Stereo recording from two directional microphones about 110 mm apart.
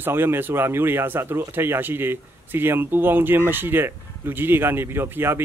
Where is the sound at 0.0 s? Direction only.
20° right (ahead or behind).